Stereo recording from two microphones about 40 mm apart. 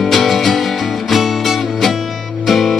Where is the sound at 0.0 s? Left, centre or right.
Centre.